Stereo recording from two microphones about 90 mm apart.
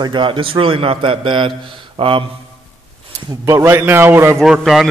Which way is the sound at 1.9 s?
85° right.